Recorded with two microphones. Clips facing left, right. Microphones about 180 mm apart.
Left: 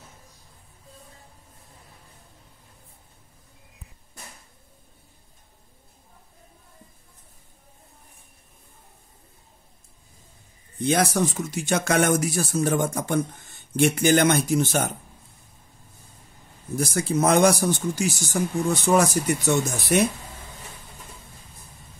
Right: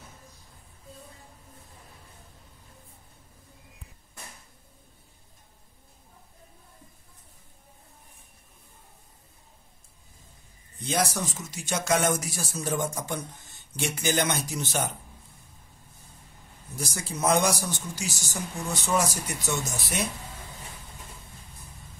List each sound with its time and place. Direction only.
10.8 s speech: 60° left (ahead or behind)
16.7 s speech: 55° left (ahead or behind)